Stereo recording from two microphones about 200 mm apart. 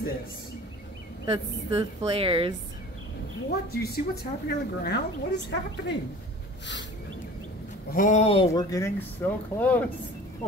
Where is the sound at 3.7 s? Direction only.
50° left (ahead or behind).